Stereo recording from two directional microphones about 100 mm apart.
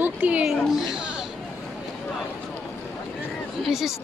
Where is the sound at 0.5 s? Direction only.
5° right (ahead or behind).